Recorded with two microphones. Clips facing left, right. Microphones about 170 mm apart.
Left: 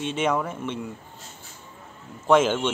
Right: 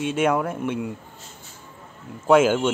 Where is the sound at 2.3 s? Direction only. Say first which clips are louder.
Right 3 dB; 10° right (ahead or behind).